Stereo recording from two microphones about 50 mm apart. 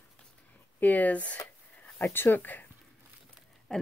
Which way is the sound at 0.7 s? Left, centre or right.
Left.